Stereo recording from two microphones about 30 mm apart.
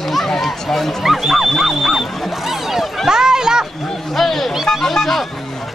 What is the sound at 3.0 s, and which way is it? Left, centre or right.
Speech, right.